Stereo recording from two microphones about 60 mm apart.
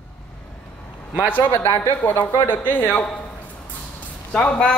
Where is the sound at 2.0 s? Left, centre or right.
Left.